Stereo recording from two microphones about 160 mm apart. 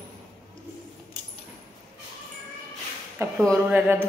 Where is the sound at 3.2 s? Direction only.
15° right (ahead or behind).